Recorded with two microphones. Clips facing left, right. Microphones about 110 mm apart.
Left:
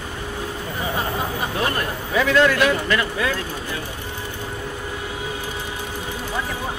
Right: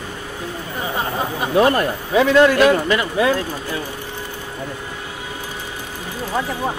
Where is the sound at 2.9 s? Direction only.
25° right (ahead or behind).